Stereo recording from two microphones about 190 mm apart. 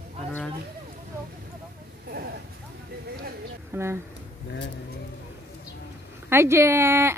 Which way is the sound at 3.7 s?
15° right (ahead or behind).